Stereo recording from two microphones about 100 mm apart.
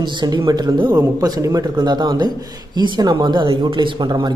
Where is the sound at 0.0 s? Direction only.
50° right (ahead or behind).